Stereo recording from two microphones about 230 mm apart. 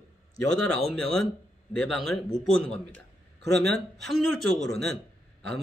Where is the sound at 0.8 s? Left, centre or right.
Centre.